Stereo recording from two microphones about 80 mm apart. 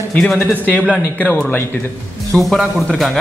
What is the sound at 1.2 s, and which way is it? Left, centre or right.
Speech, left.